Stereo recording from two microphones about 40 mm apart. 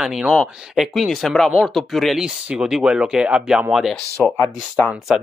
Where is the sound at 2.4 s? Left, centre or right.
Centre.